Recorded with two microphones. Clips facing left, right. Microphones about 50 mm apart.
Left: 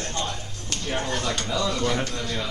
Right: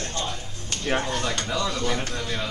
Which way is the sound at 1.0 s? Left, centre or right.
Centre.